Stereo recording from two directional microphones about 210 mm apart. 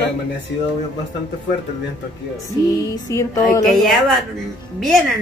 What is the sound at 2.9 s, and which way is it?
Speech, 15° left (ahead or behind).